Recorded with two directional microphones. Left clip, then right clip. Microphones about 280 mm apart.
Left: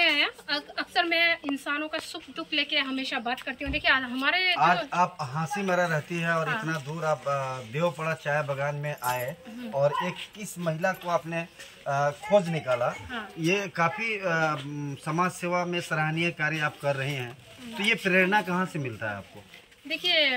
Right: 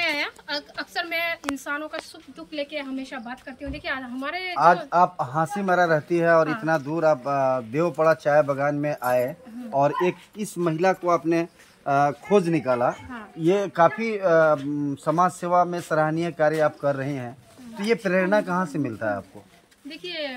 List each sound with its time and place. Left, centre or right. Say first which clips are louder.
0.0 s a sound: left 2 dB; centre
1.7 s a woman's voice: even; centre
5.2 s speech: right 6 dB; right
19.9 s speech: left 8 dB; centre